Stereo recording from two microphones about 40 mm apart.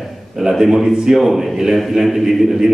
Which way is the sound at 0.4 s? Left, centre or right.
Centre.